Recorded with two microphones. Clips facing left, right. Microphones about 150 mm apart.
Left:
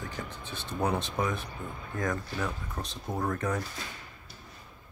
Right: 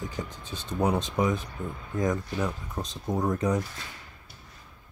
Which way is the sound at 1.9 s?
15° right (ahead or behind).